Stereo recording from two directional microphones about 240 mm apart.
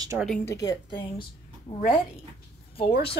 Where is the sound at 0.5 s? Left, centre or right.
Centre.